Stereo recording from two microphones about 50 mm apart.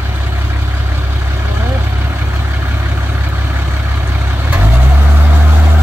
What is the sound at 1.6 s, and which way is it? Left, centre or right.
Vehicle, right.